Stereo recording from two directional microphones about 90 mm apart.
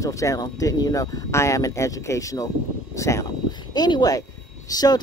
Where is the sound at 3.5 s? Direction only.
50° left (ahead or behind).